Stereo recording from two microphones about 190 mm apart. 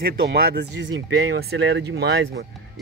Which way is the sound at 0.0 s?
55° right (ahead or behind).